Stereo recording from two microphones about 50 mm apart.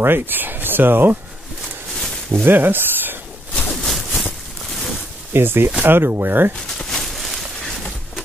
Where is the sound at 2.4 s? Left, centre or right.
Right.